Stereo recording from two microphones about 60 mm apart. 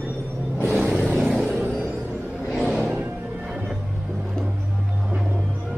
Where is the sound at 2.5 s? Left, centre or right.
Centre.